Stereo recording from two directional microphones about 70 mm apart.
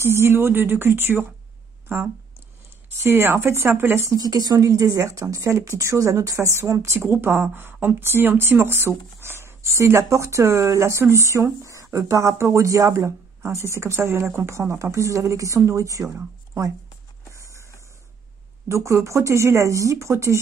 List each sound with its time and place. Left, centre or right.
0.0 s speech: right
3.0 s speech: right
4.1 s a woman's voice: right
4.6 s speech: right
18.7 s speech: right